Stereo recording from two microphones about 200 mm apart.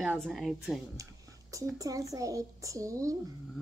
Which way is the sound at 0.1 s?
Centre (ahead or behind).